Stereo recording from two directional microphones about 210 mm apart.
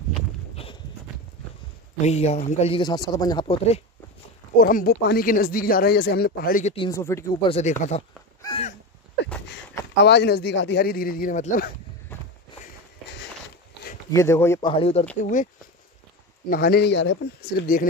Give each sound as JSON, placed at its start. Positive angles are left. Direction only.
{"t": 2.0, "sound": "speech", "side_deg": 30}
{"t": 4.6, "sound": "speech", "side_deg": 40}
{"t": 6.6, "sound": "speech", "side_deg": 25}
{"t": 6.9, "sound": "speech", "side_deg": 15}
{"t": 7.4, "sound": "speech", "side_deg": 30}
{"t": 8.4, "sound": "crow", "side_deg": 20}
{"t": 10.0, "sound": "speech", "side_deg": 55}
{"t": 14.1, "sound": "speech", "side_deg": 10}
{"t": 14.7, "sound": "speech", "side_deg": 25}
{"t": 16.4, "sound": "speech", "side_deg": 45}